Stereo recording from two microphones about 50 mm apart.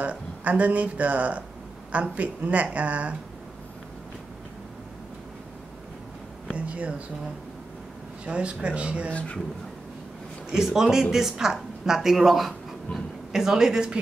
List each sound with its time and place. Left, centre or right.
0.0 s speech: right
6.4 s speech: right
8.3 s speech: right
9.1 s speech: left
10.5 s speech: centre